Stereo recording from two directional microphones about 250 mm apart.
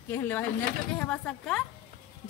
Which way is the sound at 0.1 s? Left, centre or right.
Centre.